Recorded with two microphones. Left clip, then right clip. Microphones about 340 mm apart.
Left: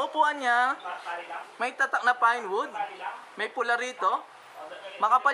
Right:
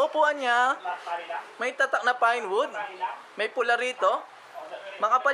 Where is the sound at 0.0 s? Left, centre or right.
Centre.